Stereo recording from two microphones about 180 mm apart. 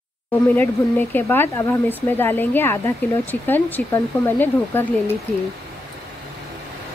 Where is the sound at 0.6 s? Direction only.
10° left (ahead or behind).